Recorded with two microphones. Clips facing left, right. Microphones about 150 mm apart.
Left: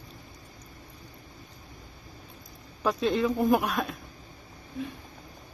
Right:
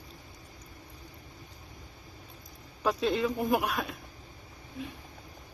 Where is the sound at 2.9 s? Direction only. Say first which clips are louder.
Left 2 dB; 5° right (ahead or behind).